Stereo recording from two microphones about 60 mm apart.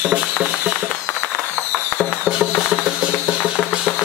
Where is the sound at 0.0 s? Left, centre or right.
Centre.